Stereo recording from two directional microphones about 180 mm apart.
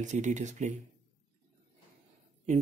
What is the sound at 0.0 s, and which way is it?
Speech, 40° right (ahead or behind).